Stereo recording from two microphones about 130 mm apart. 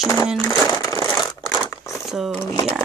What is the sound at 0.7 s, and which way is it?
Crumpling, 30° left (ahead or behind).